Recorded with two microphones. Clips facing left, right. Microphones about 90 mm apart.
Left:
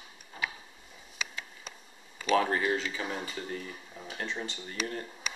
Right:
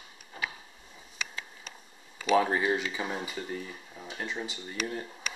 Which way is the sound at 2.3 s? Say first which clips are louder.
Right 2 dB; 10° right (ahead or behind).